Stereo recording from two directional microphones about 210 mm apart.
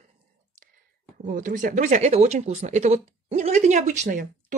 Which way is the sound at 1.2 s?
40° right (ahead or behind).